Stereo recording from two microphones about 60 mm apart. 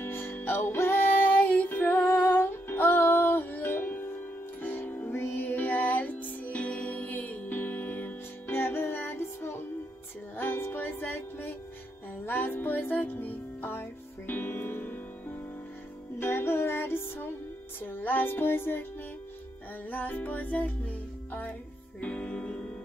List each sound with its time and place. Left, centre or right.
0.0 s music: left
19.9 s music: left